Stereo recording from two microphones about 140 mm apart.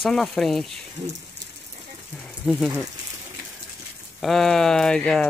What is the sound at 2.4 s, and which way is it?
Speech, 5° right (ahead or behind).